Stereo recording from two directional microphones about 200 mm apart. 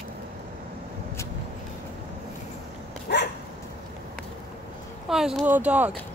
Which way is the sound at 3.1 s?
60° left (ahead or behind).